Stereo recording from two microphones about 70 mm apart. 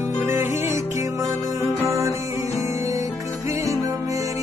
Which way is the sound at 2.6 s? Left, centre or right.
Right.